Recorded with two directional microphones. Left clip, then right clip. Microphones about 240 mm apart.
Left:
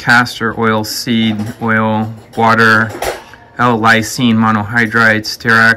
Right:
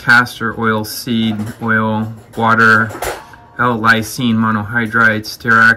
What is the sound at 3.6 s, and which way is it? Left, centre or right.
Speech, left.